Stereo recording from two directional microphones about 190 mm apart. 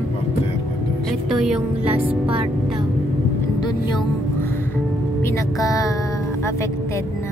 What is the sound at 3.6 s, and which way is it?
Music, 25° left (ahead or behind).